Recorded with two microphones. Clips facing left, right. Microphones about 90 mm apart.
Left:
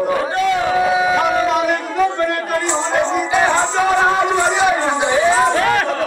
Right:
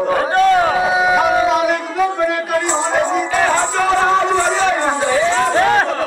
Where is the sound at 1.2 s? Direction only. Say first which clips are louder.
Right 2 dB; 5° right (ahead or behind).